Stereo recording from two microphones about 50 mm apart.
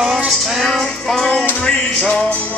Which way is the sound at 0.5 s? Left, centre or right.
Centre.